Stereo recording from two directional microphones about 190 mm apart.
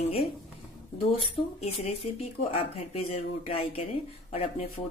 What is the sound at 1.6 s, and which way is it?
A woman's voice, 35° left (ahead or behind).